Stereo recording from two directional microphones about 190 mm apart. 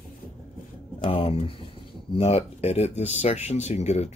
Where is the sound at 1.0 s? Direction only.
30° left (ahead or behind).